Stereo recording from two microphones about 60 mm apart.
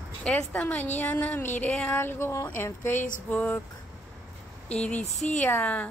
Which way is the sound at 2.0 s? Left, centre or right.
Left.